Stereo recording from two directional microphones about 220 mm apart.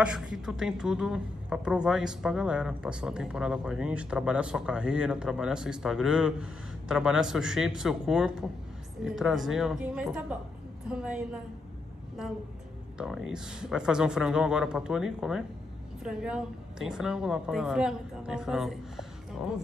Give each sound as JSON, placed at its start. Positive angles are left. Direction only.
{"t": 0.0, "sound": "a woman's voice", "side_deg": -5}
{"t": 12.9, "sound": "a woman's voice", "side_deg": 0}